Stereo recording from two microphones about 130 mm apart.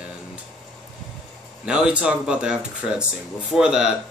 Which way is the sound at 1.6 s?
5° right (ahead or behind).